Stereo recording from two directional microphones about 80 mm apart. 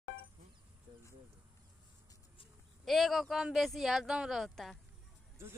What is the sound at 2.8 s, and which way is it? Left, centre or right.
Speech, centre.